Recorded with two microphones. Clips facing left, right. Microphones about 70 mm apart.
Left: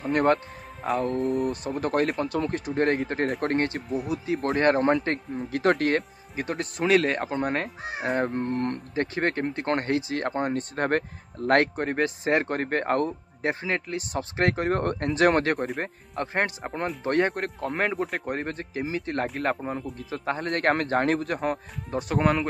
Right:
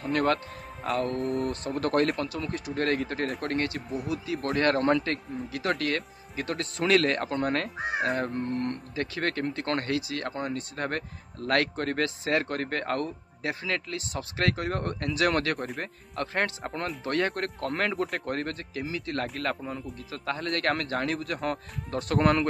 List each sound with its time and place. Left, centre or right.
0.1 s a man's voice: left
0.8 s music: centre
1.8 s speech: centre
2.2 s a man's voice: left
4.6 s a man's voice: left
6.3 s speech: centre
8.2 s a man's voice: left
11.7 s a man's voice: left
16.2 s a man's voice: centre
17.3 s music: centre
18.2 s a man's voice: centre; by 21.4 s left
21.4 s speech: centre
22.2 s music: centre